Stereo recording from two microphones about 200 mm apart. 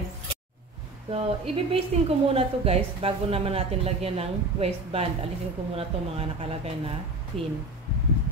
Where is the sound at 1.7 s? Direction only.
30° right (ahead or behind).